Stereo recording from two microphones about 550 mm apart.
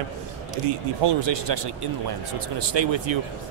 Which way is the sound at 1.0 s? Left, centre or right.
Right.